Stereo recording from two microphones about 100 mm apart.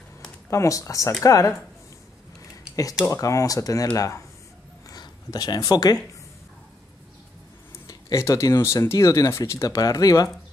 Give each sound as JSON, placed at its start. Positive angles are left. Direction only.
{"t": 0.5, "sound": "speech", "side_deg": 30}
{"t": 2.7, "sound": "speech", "side_deg": 35}
{"t": 4.8, "sound": "a sound", "side_deg": 40}
{"t": 7.8, "sound": "speech", "side_deg": 35}